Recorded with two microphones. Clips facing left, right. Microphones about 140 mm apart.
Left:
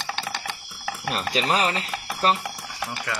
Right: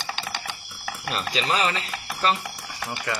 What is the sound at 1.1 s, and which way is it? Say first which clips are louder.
Speech: left 1 dB; 45° left (ahead or behind).